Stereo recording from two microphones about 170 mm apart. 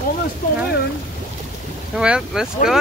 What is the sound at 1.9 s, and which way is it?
Speech, 5° right (ahead or behind).